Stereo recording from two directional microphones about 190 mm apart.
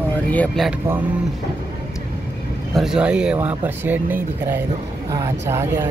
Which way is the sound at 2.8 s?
5° right (ahead or behind).